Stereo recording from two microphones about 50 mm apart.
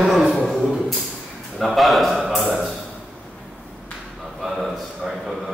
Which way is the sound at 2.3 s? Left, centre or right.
Centre.